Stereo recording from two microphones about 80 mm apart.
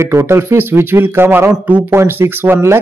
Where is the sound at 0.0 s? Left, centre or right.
Right.